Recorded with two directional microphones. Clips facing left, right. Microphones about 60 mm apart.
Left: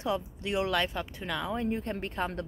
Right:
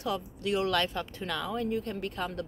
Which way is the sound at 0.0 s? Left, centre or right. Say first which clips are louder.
Left 1 dB; left.